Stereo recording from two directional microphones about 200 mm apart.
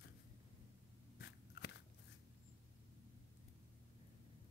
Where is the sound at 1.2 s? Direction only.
60° left (ahead or behind).